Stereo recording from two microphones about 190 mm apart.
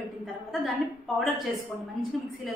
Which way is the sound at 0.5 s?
Centre (ahead or behind).